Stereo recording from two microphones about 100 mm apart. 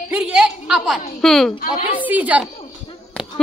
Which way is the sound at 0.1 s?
10° right (ahead or behind).